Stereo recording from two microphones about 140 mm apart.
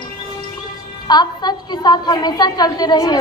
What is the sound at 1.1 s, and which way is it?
A woman's voice, 30° left (ahead or behind).